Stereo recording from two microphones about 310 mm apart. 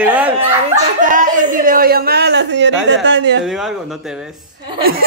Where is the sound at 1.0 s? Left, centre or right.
Right.